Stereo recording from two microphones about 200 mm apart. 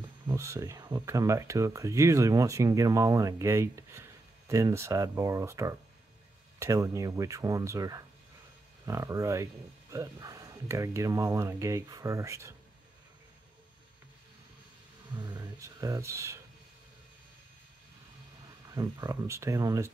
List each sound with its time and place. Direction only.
0.3 s speech: 15° right (ahead or behind)
15.1 s speech: 20° right (ahead or behind)
18.7 s speech: 15° right (ahead or behind)